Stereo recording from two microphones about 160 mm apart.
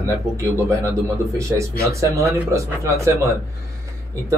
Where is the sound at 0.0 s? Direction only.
20° right (ahead or behind).